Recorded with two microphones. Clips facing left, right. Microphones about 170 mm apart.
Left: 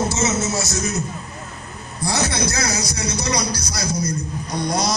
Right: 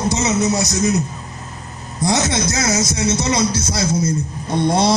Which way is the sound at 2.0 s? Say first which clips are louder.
Right 4 dB; 20° right (ahead or behind).